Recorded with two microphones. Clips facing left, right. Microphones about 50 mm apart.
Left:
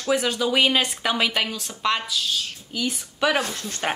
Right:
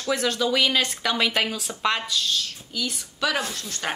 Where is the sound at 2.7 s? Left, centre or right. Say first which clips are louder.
Left 3 dB; left.